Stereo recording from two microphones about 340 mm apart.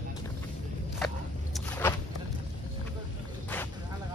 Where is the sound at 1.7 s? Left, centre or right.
Centre.